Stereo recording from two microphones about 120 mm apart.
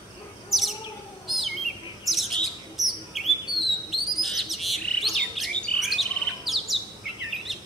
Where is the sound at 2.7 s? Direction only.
Centre (ahead or behind).